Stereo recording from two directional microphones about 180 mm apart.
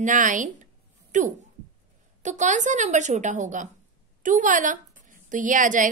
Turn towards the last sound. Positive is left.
turn(degrees=-45)  # may be behind; listen again after turning